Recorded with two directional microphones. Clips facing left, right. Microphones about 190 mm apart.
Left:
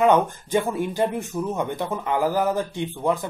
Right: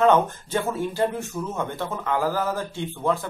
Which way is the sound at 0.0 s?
15° left (ahead or behind).